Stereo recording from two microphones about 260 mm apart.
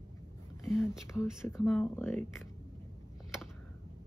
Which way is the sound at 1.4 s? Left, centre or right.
Centre.